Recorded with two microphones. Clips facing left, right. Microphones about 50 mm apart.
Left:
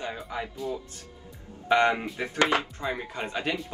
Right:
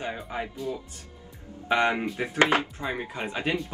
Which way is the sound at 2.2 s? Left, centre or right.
Right.